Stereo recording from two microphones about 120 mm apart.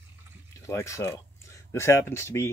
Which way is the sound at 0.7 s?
25° left (ahead or behind).